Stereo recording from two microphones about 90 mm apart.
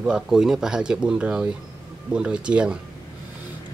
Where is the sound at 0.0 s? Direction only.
5° right (ahead or behind).